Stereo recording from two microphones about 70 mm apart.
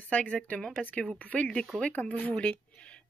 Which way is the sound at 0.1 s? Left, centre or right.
Centre.